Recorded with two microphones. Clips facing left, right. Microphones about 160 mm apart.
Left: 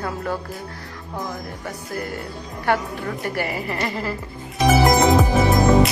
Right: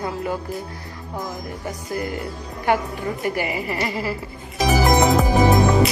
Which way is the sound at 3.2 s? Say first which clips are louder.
Right 2 dB; 10° right (ahead or behind).